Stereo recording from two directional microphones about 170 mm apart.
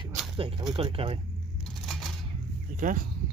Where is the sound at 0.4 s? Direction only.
30° right (ahead or behind).